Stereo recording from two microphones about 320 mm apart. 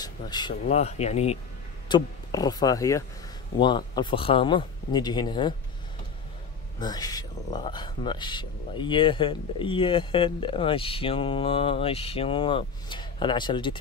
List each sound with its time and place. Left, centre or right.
0.0 s speech: centre
6.8 s speech: centre